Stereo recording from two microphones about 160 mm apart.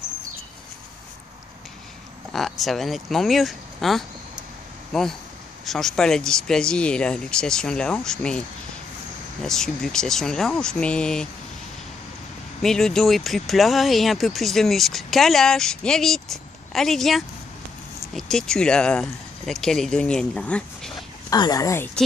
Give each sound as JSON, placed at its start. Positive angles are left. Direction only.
{"t": 2.3, "sound": "speech", "side_deg": 0}
{"t": 12.6, "sound": "speech", "side_deg": 5}
{"t": 21.3, "sound": "speech", "side_deg": 25}